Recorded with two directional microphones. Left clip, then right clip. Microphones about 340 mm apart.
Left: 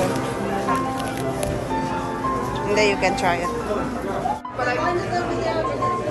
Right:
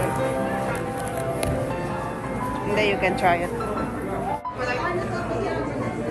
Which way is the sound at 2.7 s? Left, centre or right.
Centre.